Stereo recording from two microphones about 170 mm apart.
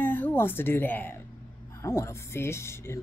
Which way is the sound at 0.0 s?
10° left (ahead or behind).